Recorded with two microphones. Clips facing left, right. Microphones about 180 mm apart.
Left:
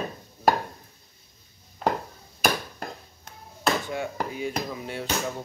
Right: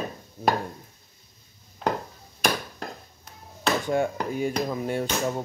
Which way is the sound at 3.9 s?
50° right (ahead or behind).